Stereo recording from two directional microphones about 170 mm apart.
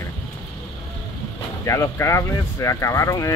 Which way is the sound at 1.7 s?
15° left (ahead or behind).